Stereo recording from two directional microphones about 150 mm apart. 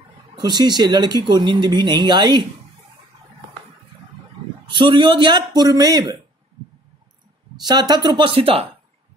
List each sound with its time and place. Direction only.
0.4 s speech: 30° right (ahead or behind)
4.6 s speech: 30° right (ahead or behind)
7.6 s speech: 25° right (ahead or behind)
8.4 s speech: 40° right (ahead or behind)